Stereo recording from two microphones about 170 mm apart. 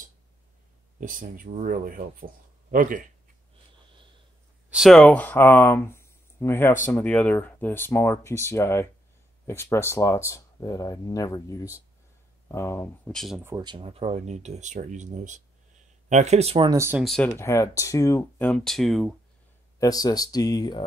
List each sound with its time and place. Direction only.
1.0 s speech: 50° right (ahead or behind)
4.6 s speech: centre (ahead or behind); by 13.1 s 15° left (ahead or behind)
13.1 s speech: centre (ahead or behind)
13.4 s speech: 15° right (ahead or behind)
13.7 s speech: 30° right (ahead or behind)
16.7 s speech: 15° right (ahead or behind)
17.0 s speech: centre (ahead or behind)
17.4 s speech: 15° left (ahead or behind)
18.5 s speech: centre (ahead or behind)
19.8 s speech: 20° left (ahead or behind)